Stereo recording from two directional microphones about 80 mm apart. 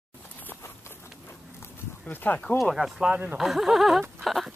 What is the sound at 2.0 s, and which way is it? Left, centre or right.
Speech, left.